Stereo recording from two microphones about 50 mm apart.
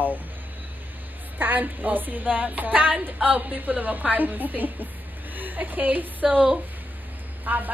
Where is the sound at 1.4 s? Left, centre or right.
Right.